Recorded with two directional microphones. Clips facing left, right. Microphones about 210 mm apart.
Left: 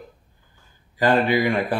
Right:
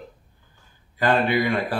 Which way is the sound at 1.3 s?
15° left (ahead or behind).